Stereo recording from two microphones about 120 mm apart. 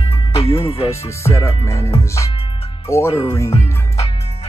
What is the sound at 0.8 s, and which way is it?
Music, 25° left (ahead or behind).